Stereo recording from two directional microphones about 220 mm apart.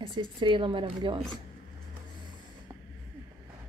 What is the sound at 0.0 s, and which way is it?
Speech, 20° right (ahead or behind).